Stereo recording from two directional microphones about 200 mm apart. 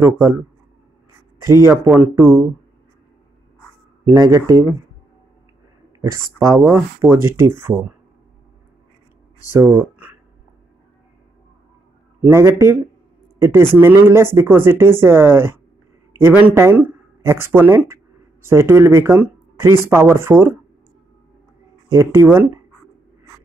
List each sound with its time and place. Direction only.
1.4 s speech: 15° right (ahead or behind)
4.0 s speech: 15° right (ahead or behind)
5.9 s speech: 15° right (ahead or behind)
9.5 s speech: 10° right (ahead or behind)
12.2 s speech: 15° right (ahead or behind)
21.9 s speech: 15° right (ahead or behind)